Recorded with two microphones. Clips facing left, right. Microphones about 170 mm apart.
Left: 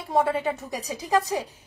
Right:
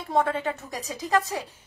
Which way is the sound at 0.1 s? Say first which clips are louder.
Left 2 dB; 10° left (ahead or behind).